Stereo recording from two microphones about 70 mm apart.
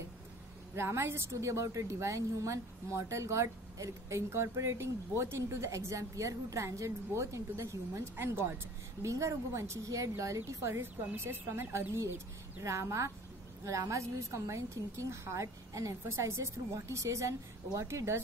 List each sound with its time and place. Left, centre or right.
0.7 s a woman's voice: right
9.0 s a woman's voice: right
12.6 s a woman's voice: right